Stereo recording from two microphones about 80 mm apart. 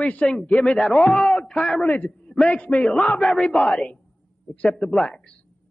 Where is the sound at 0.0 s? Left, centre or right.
Centre.